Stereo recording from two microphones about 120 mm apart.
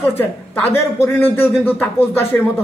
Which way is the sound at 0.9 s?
20° left (ahead or behind).